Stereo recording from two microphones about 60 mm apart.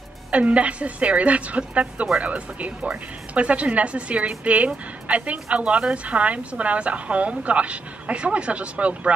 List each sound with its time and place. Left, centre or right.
0.3 s speech: right